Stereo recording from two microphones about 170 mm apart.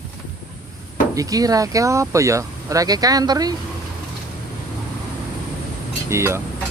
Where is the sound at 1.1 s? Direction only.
20° right (ahead or behind).